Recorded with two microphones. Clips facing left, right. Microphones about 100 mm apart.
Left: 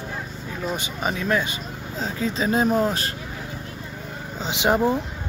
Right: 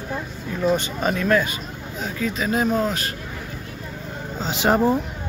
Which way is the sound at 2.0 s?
30° left (ahead or behind).